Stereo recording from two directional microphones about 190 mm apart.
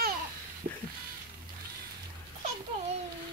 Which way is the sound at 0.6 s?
45° right (ahead or behind).